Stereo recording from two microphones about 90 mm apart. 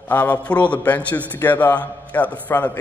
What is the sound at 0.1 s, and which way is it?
A man's voice, 15° left (ahead or behind).